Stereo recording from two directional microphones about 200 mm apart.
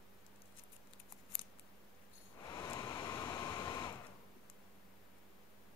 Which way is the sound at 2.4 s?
20° left (ahead or behind).